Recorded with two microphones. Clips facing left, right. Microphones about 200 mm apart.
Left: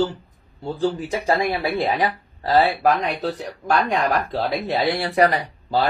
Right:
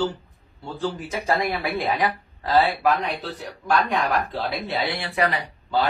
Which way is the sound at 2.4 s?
45° left (ahead or behind).